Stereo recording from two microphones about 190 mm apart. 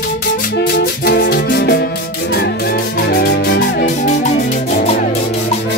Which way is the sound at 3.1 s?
60° left (ahead or behind).